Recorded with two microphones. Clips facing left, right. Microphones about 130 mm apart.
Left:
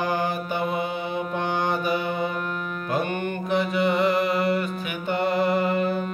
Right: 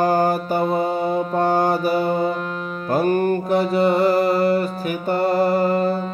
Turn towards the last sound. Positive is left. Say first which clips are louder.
# right 4 dB
turn(degrees=-35)  # may be behind; listen again after turning